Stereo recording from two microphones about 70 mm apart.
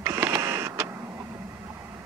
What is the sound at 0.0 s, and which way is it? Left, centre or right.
Printer, right.